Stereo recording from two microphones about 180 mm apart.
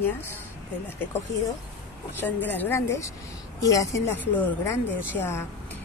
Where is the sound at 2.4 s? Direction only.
10° left (ahead or behind).